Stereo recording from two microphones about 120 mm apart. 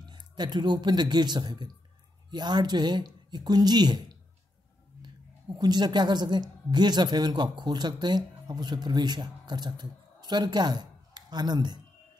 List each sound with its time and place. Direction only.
0.1 s speech: 35° right (ahead or behind)
5.6 s speech: 35° right (ahead or behind)